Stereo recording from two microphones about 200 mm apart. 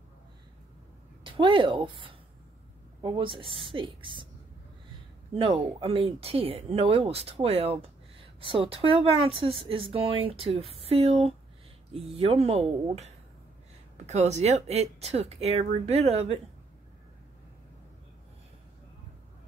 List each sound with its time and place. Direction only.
1.2 s speech: 25° right (ahead or behind)
5.3 s speech: 25° right (ahead or behind)